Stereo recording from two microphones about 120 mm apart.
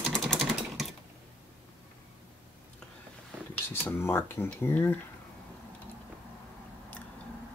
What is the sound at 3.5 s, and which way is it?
Speech, 15° left (ahead or behind).